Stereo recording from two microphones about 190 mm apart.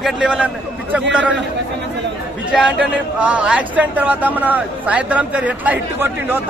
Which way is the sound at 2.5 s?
5° right (ahead or behind).